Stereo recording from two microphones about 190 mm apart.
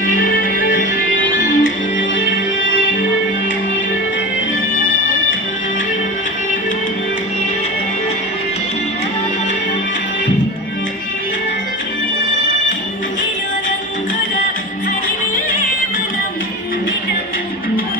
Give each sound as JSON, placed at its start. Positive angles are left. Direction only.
{"t": 0.4, "sound": "music", "side_deg": 45}
{"t": 1.6, "sound": "music", "side_deg": 80}